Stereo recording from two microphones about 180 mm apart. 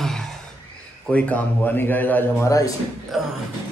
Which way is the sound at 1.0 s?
5° left (ahead or behind).